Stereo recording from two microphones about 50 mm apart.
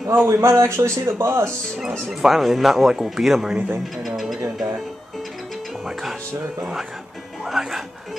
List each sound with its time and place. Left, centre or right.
0.0 s speech: right
0.3 s speech: right
2.2 s speech: centre
3.5 s speech: right
4.0 s speech: centre
7.4 s speech: centre